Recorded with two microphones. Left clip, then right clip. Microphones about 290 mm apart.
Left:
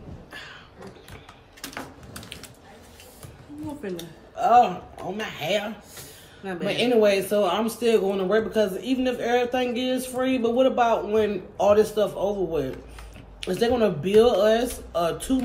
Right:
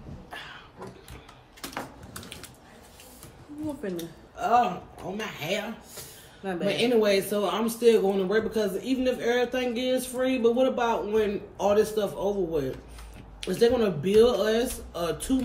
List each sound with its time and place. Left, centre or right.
3.9 s speech: centre
6.7 s speech: centre